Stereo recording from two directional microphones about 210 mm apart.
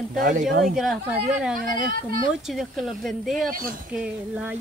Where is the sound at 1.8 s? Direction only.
40° right (ahead or behind).